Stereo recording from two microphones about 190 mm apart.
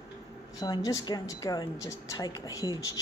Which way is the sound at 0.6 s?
20° left (ahead or behind).